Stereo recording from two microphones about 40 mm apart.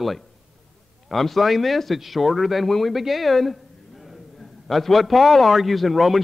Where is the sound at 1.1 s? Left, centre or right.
Centre.